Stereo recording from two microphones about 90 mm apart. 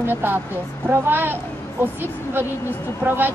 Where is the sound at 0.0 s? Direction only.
25° right (ahead or behind).